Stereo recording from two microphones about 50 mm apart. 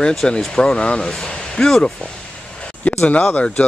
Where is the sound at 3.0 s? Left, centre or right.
Left.